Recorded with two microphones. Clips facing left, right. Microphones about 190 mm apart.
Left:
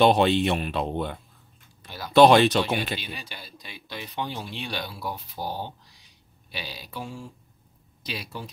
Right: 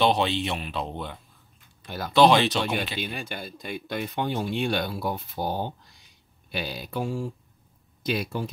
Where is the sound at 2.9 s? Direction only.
50° right (ahead or behind).